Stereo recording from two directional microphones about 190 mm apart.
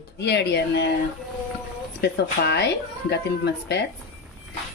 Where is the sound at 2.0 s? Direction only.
60° left (ahead or behind).